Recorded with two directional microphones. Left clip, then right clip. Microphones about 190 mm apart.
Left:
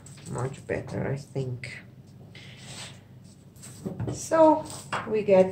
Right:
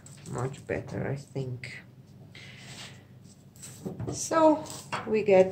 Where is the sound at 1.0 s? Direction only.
Centre (ahead or behind).